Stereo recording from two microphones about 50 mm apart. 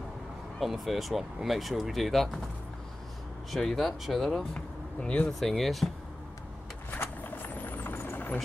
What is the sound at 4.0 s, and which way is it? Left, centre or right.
Speech, centre.